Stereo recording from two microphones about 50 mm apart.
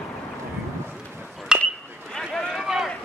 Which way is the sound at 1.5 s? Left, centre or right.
Centre.